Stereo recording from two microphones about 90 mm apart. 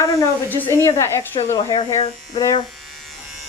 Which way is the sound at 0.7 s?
35° left (ahead or behind).